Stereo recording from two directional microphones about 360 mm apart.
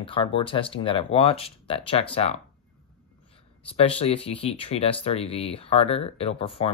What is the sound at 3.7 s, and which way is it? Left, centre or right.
Speech, centre.